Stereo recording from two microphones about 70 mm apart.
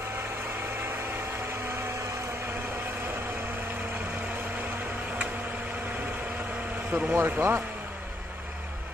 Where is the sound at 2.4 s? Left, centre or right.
Right.